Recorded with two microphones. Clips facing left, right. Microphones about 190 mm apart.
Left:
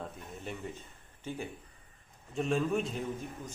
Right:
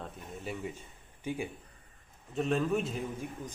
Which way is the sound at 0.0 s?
Centre (ahead or behind).